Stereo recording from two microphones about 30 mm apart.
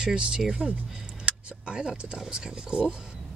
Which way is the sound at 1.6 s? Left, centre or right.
Right.